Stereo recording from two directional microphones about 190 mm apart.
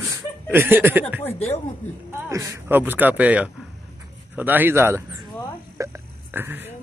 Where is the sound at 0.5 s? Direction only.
10° right (ahead or behind).